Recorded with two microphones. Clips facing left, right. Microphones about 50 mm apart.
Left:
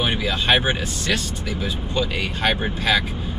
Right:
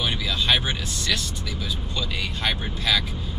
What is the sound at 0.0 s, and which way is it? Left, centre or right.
Speech, left.